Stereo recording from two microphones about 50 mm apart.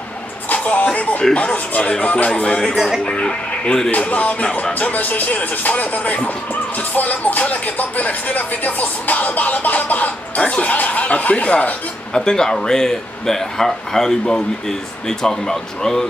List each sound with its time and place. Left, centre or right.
0.5 s music: left
1.3 s speech: left
3.9 s speech: left; by 16.1 s centre